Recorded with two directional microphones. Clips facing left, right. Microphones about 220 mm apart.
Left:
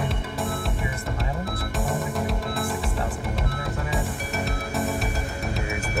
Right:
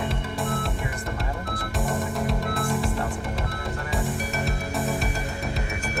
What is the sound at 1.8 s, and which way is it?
Music, centre (ahead or behind).